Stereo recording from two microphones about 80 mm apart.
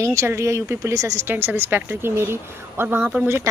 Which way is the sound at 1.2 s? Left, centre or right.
Right.